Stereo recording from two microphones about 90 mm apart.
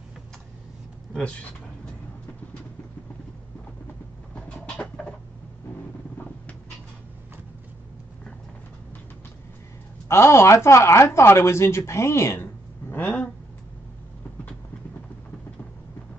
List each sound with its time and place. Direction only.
4.4 s bird: 10° left (ahead or behind)
10.0 s speech: 30° left (ahead or behind)